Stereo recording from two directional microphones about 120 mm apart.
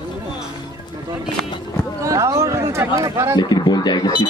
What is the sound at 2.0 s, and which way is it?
Speech, 25° right (ahead or behind).